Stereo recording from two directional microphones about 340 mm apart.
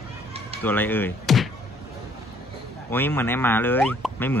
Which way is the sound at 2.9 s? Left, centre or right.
Centre.